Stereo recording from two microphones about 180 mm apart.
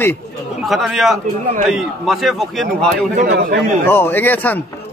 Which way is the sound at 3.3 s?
70° right (ahead or behind).